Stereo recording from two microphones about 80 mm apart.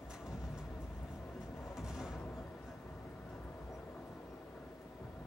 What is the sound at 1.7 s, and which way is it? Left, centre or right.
Music, centre.